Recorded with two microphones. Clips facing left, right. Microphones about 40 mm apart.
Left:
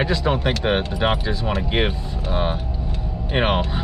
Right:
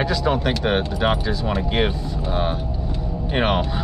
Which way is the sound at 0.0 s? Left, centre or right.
Left.